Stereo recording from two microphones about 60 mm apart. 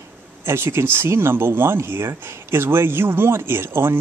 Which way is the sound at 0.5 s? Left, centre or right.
Right.